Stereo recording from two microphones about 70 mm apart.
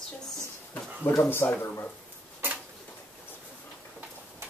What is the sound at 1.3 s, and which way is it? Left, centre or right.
Speech, left.